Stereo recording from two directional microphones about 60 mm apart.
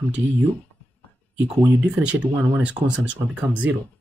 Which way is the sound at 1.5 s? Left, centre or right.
Right.